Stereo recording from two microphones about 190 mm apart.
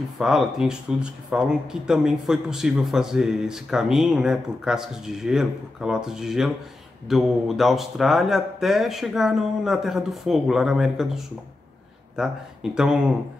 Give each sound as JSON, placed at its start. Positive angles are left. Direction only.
{"t": 0.2, "sound": "speech", "side_deg": 0}